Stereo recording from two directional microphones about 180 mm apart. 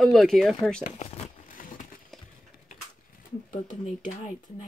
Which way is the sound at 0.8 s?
45° left (ahead or behind).